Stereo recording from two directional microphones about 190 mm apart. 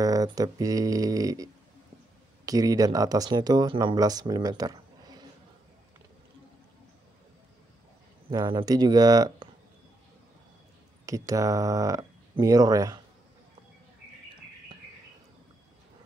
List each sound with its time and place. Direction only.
0.0 s speech: 20° right (ahead or behind)
8.3 s speech: 20° right (ahead or behind)
11.1 s speech: 15° right (ahead or behind)